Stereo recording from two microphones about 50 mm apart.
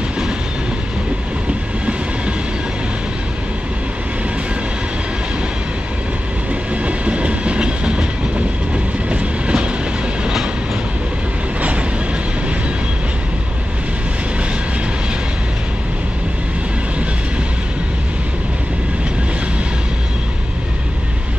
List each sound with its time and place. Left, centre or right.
6.7 s train: right
9.1 s train: centre